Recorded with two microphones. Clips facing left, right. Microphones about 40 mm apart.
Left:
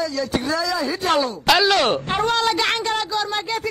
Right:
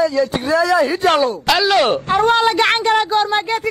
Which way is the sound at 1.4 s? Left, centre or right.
Centre.